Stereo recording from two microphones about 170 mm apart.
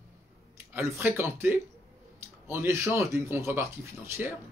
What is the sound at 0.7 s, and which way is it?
Speech, 10° right (ahead or behind).